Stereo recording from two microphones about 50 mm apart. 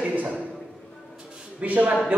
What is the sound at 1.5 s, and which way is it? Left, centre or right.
Speech, right.